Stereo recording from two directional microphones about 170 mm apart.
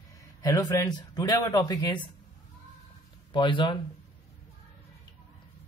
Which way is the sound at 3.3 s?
30° left (ahead or behind).